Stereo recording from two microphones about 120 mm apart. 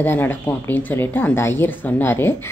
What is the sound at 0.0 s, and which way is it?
Speech, 15° left (ahead or behind).